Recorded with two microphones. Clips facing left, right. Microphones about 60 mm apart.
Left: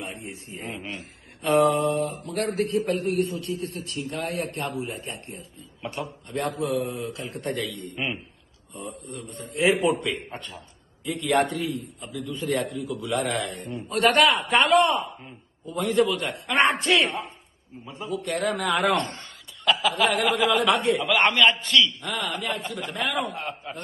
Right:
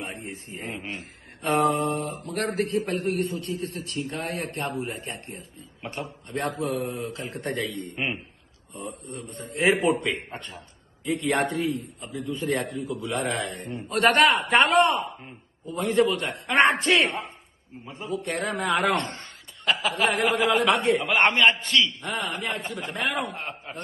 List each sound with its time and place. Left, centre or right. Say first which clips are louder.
0.0 s speech: even; right